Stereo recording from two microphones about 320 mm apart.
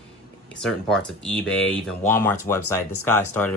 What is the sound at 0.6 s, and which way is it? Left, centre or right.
Speech, centre.